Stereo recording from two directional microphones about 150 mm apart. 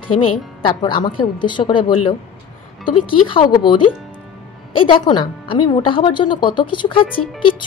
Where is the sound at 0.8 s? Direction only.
30° left (ahead or behind).